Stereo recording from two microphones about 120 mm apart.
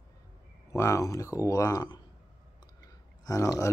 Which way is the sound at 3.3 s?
30° left (ahead or behind).